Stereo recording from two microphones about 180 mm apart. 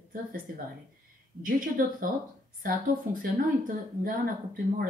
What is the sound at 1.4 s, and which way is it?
Speech, 50° right (ahead or behind).